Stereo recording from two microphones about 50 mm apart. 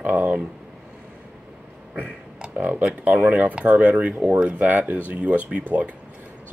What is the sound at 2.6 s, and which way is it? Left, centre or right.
Speech, right.